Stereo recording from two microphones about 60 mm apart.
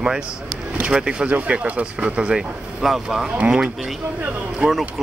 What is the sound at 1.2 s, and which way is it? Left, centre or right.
Speech, right.